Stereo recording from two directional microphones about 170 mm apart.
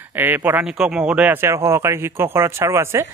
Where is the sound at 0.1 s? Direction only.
10° right (ahead or behind).